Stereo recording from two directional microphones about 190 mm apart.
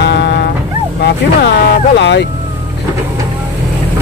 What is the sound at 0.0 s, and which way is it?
Music, 60° left (ahead or behind).